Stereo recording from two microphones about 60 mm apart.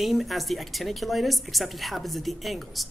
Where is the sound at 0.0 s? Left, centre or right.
Centre.